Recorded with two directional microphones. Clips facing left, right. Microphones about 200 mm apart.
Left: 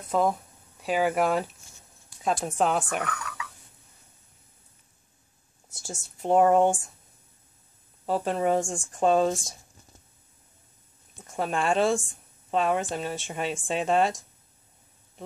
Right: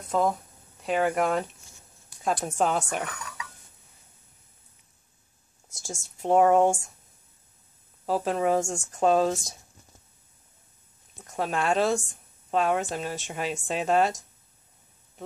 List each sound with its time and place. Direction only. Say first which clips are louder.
0.1 s speech: even; 5° left (ahead or behind)
3.1 s a sound: left 4 dB; 25° right (ahead or behind)
5.8 s speech: right 1 dB; centre (ahead or behind)
8.1 s speech: even; centre (ahead or behind)
11.2 s speech: even; centre (ahead or behind)